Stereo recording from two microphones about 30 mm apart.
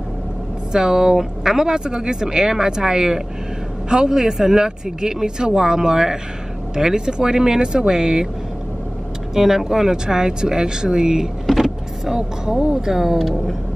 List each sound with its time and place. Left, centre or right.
0.7 s speech: centre
9.3 s speech: centre
11.5 s power windows: centre
12.2 s speech: right